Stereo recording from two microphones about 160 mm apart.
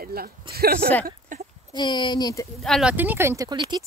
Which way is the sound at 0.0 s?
70° right (ahead or behind).